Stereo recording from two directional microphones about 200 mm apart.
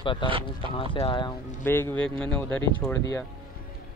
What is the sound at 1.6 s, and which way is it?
Speech, 10° left (ahead or behind).